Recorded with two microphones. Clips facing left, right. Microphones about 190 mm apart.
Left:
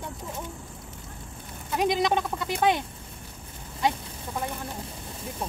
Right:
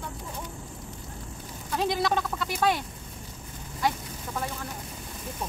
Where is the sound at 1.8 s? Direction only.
15° left (ahead or behind).